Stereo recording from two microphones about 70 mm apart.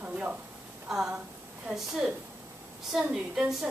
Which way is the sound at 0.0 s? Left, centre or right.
Centre.